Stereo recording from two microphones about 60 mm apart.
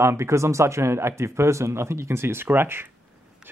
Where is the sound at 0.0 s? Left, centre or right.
Right.